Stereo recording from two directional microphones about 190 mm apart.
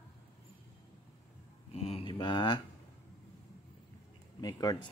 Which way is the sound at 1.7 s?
35° left (ahead or behind).